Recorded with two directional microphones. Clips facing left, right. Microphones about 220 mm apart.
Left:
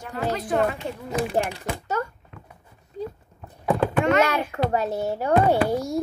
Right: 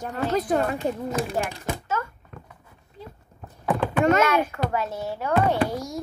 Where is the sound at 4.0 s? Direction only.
40° right (ahead or behind).